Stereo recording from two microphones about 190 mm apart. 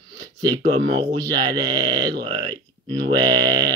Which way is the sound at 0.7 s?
25° right (ahead or behind).